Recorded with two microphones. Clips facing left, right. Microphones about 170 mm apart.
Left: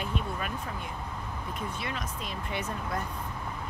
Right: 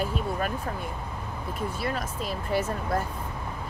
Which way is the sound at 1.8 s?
40° right (ahead or behind).